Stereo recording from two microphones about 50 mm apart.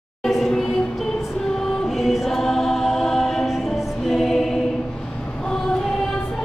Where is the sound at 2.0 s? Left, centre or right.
Centre.